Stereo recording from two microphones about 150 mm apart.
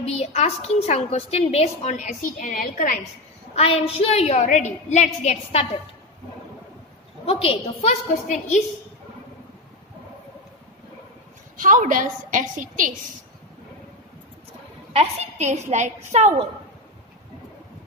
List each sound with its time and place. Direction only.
0.0 s a woman's voice: 45° left (ahead or behind); by 3.0 s 70° left (ahead or behind)
3.5 s a woman's voice: 40° left (ahead or behind)
7.2 s a woman's voice: 40° left (ahead or behind)
11.5 s a woman's voice: 60° right (ahead or behind)
14.9 s a woman's voice: 45° right (ahead or behind)